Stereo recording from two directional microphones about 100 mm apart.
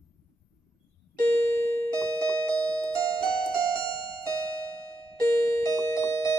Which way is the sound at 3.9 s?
50° left (ahead or behind).